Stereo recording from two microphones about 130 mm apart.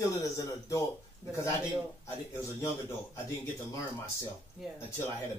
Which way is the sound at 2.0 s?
25° left (ahead or behind).